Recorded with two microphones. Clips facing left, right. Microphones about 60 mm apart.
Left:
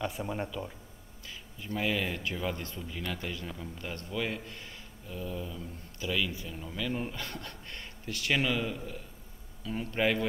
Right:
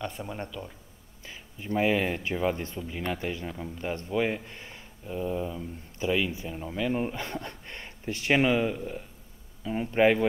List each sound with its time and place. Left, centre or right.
0.0 s speech: centre
1.2 s a sound: right
2.1 s a man's voice: right